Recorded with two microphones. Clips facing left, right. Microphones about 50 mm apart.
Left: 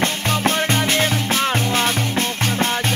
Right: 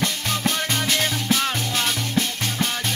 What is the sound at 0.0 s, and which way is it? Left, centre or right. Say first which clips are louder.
Music: left 5 dB; left.